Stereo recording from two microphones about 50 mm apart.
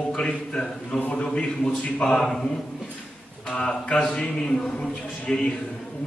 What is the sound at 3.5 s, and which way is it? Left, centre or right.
A man's voice, centre.